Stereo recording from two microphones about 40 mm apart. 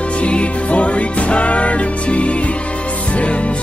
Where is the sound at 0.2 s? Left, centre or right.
Left.